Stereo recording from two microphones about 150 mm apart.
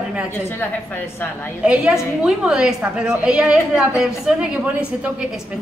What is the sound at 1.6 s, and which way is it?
A woman's voice, 5° right (ahead or behind).